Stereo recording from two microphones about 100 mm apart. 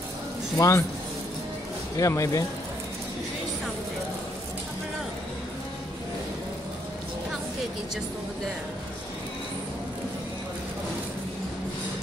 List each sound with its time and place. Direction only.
0.6 s speech: 30° left (ahead or behind)
2.0 s speech: 35° left (ahead or behind)